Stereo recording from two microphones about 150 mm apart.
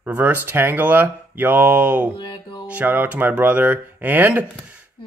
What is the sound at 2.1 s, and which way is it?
Music, 30° left (ahead or behind).